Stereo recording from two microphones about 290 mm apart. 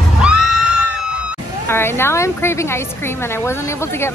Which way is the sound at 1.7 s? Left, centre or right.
Centre.